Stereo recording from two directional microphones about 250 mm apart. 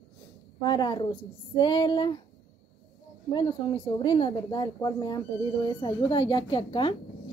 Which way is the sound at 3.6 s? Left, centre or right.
Left.